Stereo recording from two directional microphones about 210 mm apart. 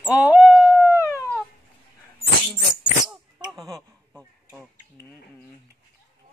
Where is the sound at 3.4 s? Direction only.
Centre (ahead or behind).